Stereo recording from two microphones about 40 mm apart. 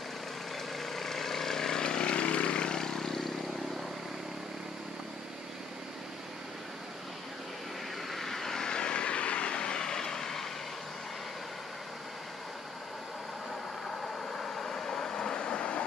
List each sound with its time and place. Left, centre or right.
0.7 s vehicle: centre
8.1 s vehicle: centre
13.8 s vehicle: centre; by 15.8 s left